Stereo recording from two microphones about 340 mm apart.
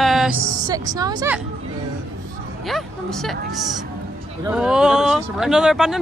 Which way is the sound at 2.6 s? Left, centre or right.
Centre.